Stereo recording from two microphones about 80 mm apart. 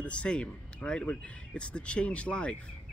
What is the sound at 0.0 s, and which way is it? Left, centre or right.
Speech, centre.